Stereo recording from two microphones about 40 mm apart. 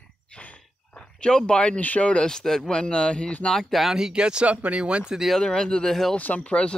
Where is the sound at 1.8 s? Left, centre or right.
Left.